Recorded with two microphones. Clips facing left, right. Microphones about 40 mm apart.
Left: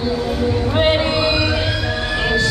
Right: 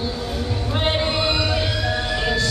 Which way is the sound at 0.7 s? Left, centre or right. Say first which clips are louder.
Left 4 dB; centre.